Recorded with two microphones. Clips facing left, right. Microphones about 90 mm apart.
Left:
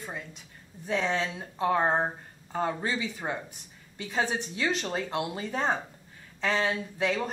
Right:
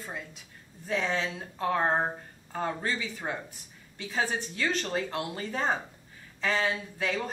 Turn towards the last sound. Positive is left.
turn(degrees=5)  # may be behind; listen again after turning